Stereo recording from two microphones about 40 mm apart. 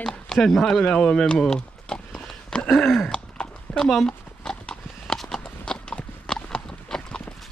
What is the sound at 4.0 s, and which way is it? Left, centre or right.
Clip-clop, centre.